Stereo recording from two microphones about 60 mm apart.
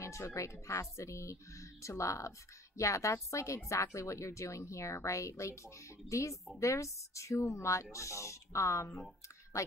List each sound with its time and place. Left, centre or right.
0.0 s a woman's voice: left